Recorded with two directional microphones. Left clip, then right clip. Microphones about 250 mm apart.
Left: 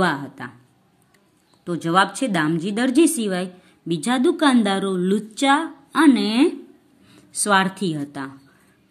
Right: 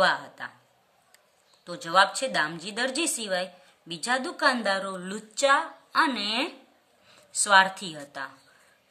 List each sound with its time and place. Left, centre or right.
0.0 s a woman's voice: centre
1.6 s a woman's voice: centre